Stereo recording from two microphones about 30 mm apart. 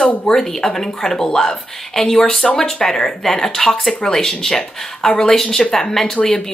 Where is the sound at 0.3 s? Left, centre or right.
Centre.